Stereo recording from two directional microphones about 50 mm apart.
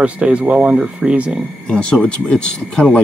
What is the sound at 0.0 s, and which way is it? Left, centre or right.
Speech, right.